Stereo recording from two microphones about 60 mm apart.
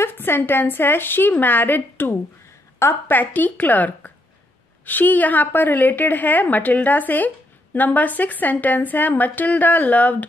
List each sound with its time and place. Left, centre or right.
0.0 s a woman's voice: left